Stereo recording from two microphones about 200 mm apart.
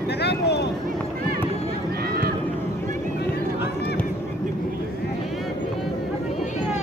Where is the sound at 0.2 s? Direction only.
55° left (ahead or behind).